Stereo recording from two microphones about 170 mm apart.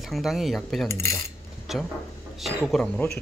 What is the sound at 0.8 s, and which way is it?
Cutlery, 15° left (ahead or behind).